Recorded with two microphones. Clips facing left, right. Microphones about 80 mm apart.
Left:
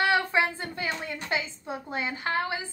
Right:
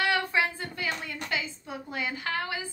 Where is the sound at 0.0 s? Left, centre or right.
Left.